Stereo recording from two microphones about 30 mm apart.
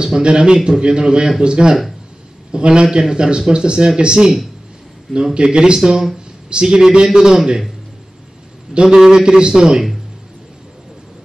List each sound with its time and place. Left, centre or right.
0.0 s a man's voice: right
8.8 s a man's voice: centre